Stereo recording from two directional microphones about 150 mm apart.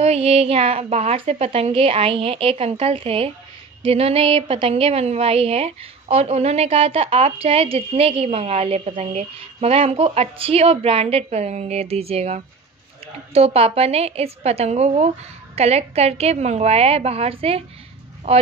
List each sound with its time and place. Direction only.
0.0 s a woman's voice: 40° right (ahead or behind)